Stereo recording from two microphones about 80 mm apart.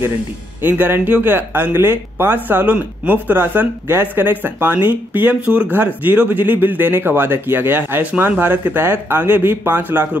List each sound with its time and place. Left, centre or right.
0.6 s speech: right